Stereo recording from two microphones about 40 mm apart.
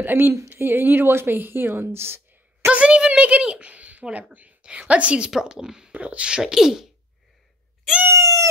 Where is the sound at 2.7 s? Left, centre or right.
Right.